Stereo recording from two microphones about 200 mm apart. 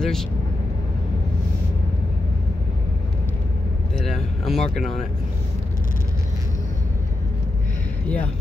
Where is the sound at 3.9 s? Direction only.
5° left (ahead or behind).